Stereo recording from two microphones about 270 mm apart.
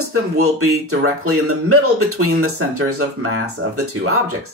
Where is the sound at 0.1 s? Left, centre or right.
Right.